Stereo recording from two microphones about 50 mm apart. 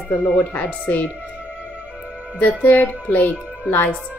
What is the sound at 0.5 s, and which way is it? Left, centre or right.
Speech, left.